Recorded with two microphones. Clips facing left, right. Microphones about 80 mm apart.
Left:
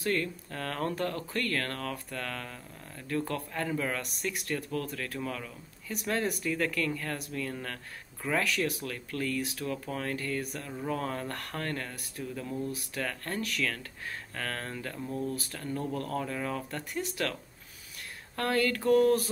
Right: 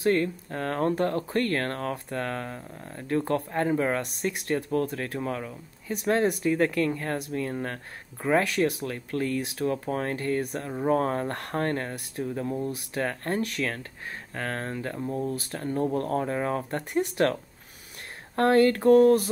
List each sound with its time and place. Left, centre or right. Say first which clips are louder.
0.0 s speech: right 7 dB; right